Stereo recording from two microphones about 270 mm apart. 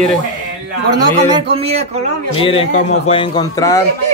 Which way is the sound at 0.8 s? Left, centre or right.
Centre.